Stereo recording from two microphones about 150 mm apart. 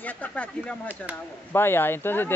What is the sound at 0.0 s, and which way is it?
Speech, 10° left (ahead or behind).